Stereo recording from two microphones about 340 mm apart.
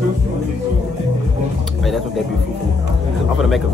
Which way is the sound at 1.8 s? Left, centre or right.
Centre.